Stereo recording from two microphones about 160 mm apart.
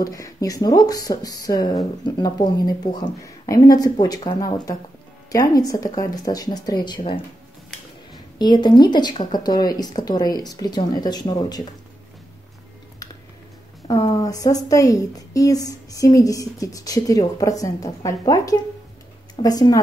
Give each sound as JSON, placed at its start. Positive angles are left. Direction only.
{"t": 0.0, "sound": "a woman's voice", "side_deg": 20}
{"t": 8.4, "sound": "a woman's voice", "side_deg": 25}
{"t": 13.8, "sound": "a woman's voice", "side_deg": 20}